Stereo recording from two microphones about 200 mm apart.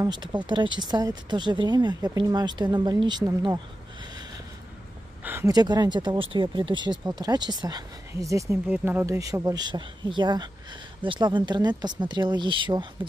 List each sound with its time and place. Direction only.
0.0 s speech: 20° right (ahead or behind)
5.2 s speech: 10° right (ahead or behind)